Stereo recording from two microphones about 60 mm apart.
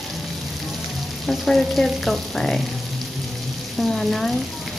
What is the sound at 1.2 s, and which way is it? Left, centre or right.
Frying, centre.